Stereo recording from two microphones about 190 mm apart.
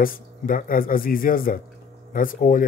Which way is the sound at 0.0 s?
50° left (ahead or behind).